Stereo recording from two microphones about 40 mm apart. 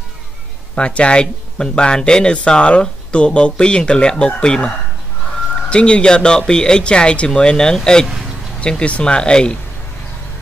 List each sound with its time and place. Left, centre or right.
0.7 s speech: left
8.6 s speech: left